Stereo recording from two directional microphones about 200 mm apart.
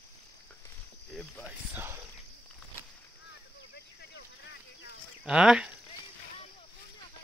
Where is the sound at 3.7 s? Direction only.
55° left (ahead or behind).